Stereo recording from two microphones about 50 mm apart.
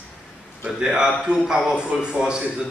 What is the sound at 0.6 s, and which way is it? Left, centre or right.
Speech, centre.